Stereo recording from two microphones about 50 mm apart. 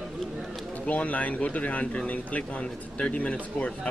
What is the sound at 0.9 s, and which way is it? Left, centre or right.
Speech, left.